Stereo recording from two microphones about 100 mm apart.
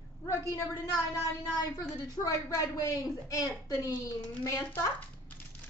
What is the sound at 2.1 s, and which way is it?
A woman's voice, 35° left (ahead or behind).